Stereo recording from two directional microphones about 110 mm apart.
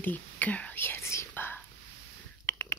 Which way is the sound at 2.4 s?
20° left (ahead or behind).